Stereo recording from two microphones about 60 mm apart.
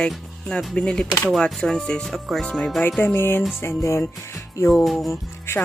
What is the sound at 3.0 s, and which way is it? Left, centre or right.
Music, left.